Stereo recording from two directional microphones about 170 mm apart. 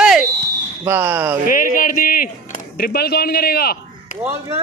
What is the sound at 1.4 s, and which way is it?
Speech, 55° left (ahead or behind).